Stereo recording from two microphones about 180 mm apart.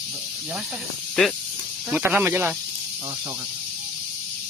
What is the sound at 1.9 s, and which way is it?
Speech, 10° right (ahead or behind).